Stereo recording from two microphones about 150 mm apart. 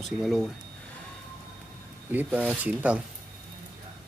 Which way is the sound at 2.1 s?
10° right (ahead or behind).